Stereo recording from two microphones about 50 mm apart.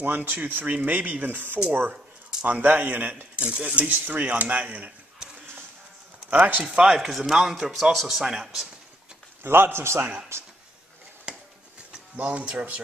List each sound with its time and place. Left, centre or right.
0.0 s speech: right
3.4 s speech: centre
4.1 s speech: right
6.3 s speech: right
6.9 s a man's voice: centre
9.4 s a man's voice: right
11.3 s a sound: centre
12.2 s speech: right